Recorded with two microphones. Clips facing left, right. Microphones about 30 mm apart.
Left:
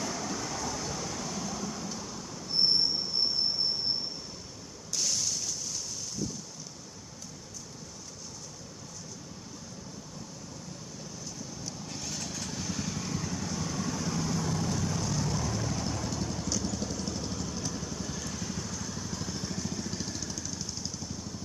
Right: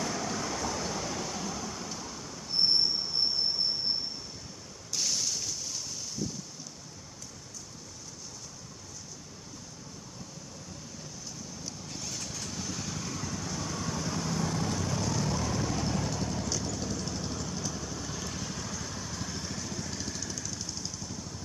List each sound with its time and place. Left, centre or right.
0.0 s train: centre
4.9 s boat: centre
11.6 s vehicle: centre; by 16.1 s right
16.1 s vehicle: centre
19.3 s vehicle: centre